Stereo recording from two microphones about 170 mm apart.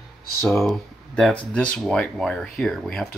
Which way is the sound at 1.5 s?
5° left (ahead or behind).